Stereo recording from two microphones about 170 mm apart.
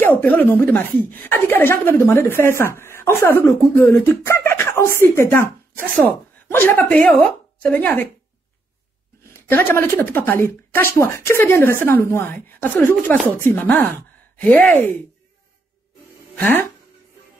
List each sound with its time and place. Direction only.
0.0 s a woman's voice: 10° left (ahead or behind)
9.3 s a woman's voice: 10° left (ahead or behind)
16.3 s speech: 10° left (ahead or behind)